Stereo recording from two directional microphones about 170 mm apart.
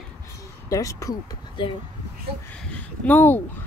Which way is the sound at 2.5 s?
10° left (ahead or behind).